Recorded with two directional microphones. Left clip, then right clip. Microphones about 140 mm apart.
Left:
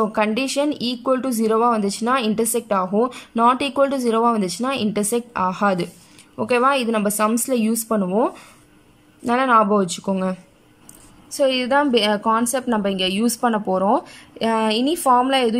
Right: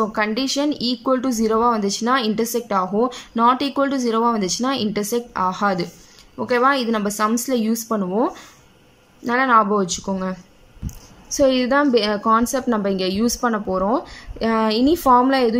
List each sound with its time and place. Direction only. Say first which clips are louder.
0.0 s speech: left 1 dB; 15° left (ahead or behind)
11.3 s speech: right 1 dB; 5° left (ahead or behind)